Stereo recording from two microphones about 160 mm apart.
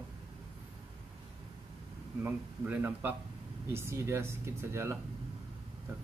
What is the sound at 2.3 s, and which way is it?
Speech, 10° right (ahead or behind).